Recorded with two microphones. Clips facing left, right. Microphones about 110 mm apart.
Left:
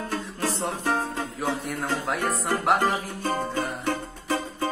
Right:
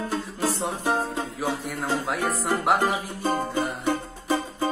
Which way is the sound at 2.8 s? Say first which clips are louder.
Even; 15° right (ahead or behind).